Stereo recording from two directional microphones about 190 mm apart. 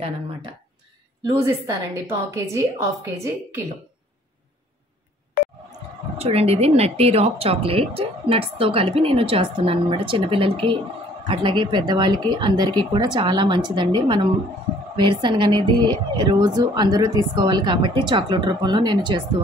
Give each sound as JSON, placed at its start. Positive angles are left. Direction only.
{"t": 1.2, "sound": "a woman's voice", "side_deg": -15}
{"t": 5.4, "sound": "a sound", "side_deg": 50}
{"t": 6.1, "sound": "speech", "side_deg": -30}